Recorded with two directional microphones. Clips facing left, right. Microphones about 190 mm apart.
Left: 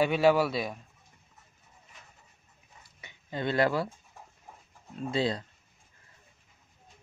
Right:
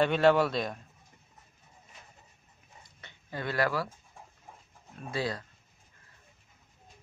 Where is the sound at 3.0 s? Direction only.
15° left (ahead or behind).